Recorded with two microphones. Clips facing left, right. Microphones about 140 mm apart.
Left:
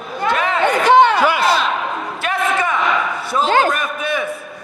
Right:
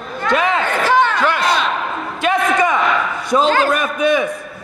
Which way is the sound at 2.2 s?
15° right (ahead or behind).